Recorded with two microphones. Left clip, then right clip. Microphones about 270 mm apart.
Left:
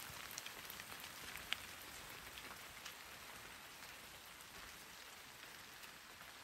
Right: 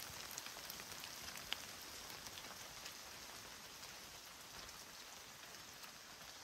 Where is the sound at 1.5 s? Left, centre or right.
Centre.